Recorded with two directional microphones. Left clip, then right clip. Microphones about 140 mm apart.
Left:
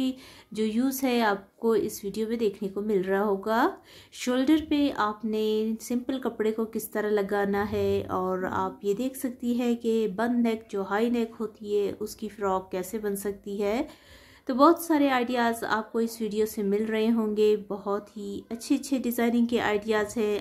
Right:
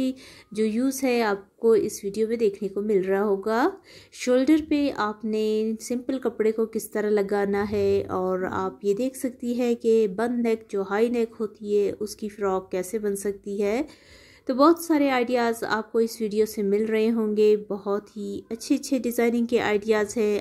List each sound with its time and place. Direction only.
0.0 s a woman's voice: 20° right (ahead or behind)